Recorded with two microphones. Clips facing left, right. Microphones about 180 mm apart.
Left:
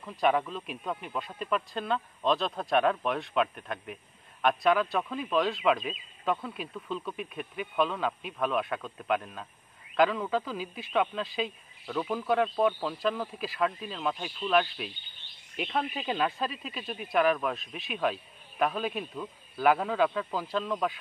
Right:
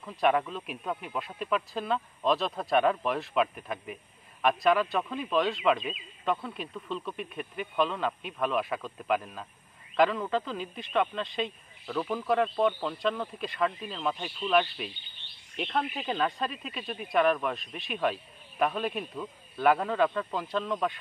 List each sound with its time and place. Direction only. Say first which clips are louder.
0.0 s speech: right 1 dB; centre (ahead or behind)